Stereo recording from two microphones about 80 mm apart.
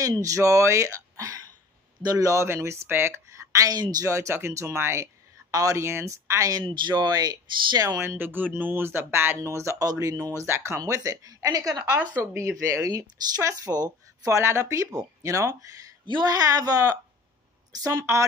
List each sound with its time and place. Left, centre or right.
0.0 s speech: right
3.3 s a sound: right
4.0 s speech: right
6.7 s speech: right
8.0 s speech: right
9.4 s speech: right
10.4 s speech: right
10.8 s speech: right
12.2 s speech: right
16.3 s speech: right